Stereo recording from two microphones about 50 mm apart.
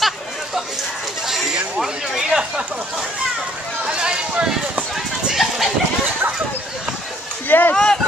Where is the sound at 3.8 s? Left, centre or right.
Centre.